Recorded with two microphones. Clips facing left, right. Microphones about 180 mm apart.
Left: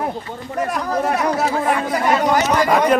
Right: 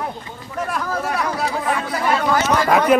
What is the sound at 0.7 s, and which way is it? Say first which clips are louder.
Speech: left 3 dB; 20° left (ahead or behind).